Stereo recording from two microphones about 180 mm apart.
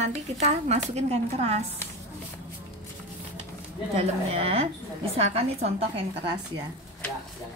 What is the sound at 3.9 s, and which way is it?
A woman's voice, 35° right (ahead or behind).